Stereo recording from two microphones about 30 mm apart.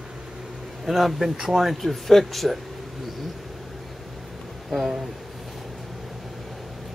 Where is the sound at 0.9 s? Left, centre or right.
Centre.